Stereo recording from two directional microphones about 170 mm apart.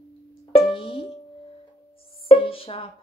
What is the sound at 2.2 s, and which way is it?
Music, 35° left (ahead or behind).